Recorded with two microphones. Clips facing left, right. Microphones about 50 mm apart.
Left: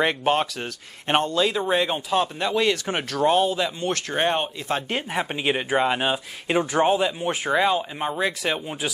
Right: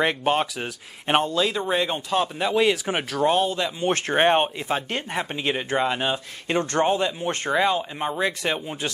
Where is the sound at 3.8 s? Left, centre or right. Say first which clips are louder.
Right 3 dB; right.